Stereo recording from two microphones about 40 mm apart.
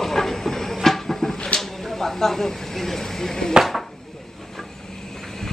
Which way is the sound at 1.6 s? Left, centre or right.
Centre.